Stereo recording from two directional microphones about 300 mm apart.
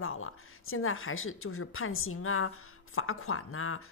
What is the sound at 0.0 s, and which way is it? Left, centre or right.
Speech, left.